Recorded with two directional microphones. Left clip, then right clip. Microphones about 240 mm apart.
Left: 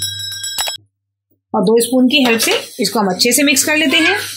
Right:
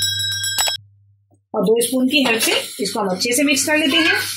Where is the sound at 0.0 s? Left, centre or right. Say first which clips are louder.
Right 3 dB; centre.